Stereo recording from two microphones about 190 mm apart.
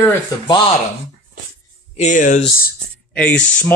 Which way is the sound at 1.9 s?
40° left (ahead or behind).